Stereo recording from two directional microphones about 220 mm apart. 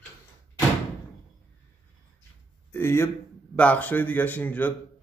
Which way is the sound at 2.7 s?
10° left (ahead or behind).